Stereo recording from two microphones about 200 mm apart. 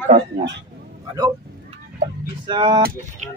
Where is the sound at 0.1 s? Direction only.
30° right (ahead or behind).